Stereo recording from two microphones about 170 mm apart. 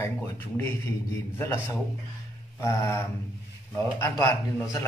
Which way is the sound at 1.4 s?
15° left (ahead or behind).